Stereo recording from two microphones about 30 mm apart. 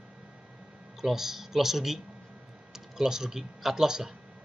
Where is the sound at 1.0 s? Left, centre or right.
Centre.